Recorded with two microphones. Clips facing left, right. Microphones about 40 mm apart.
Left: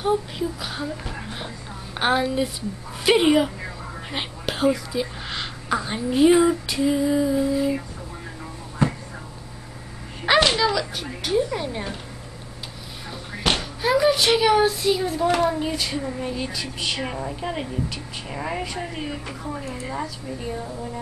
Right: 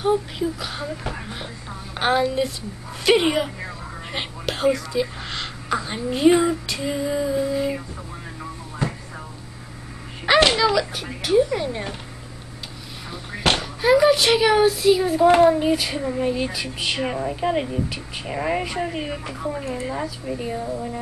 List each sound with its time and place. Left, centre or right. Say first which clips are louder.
0.0 s speech: right 2 dB; centre
1.0 s speech: right 3 dB; centre
2.0 s speech: right 1 dB; centre
10.3 s a sound: right 2 dB; centre
10.6 s speech: right 2 dB; centre
13.6 s speech: right 5 dB; centre
15.2 s speech: right 7 dB; right